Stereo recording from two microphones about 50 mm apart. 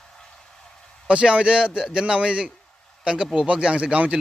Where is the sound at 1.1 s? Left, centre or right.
Right.